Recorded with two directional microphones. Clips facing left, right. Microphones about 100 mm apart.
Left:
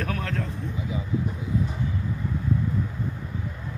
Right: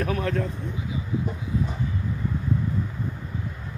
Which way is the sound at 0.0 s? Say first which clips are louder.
Right 4 dB; 10° right (ahead or behind).